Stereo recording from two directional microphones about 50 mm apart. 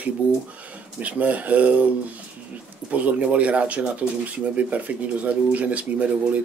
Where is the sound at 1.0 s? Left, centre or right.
Right.